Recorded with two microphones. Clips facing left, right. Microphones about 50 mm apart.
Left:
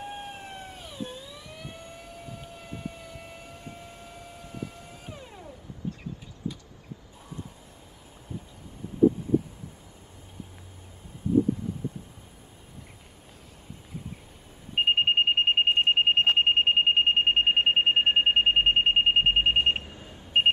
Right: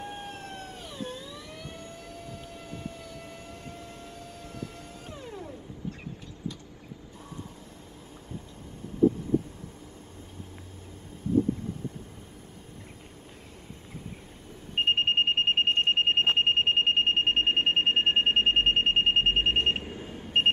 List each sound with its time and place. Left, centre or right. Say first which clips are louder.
0.0 s emergency vehicle: left 1 dB; centre
5.0 s music: right 4 dB; centre
14.8 s smoke detector: left 2 dB; centre
19.8 s alarm: right 5 dB; right